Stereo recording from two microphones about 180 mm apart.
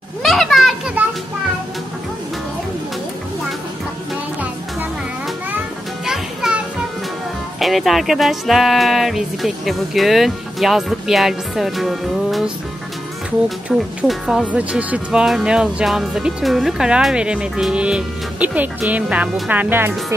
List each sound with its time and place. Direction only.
0.2 s children playing: centre (ahead or behind)
6.0 s music: 5° right (ahead or behind)
7.5 s speech: centre (ahead or behind)
13.7 s speech: centre (ahead or behind)